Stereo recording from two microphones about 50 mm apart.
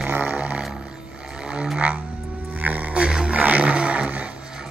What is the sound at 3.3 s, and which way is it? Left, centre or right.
Roar, right.